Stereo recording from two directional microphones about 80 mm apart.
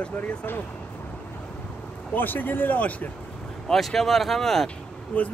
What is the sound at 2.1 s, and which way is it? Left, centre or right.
Speech, left.